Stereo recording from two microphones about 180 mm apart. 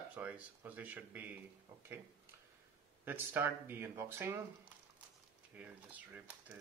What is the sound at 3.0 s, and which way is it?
Speech, 10° right (ahead or behind).